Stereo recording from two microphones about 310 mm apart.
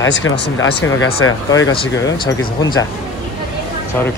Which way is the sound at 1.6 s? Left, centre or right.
Centre.